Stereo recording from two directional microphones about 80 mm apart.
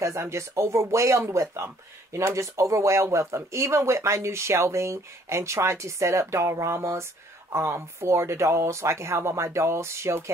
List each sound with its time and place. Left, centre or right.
0.0 s speech: right